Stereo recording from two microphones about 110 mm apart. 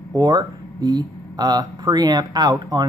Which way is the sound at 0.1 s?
35° right (ahead or behind).